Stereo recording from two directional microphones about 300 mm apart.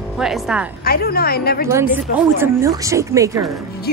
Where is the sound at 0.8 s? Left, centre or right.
Left.